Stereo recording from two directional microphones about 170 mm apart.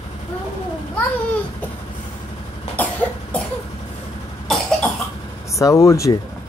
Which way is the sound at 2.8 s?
10° left (ahead or behind).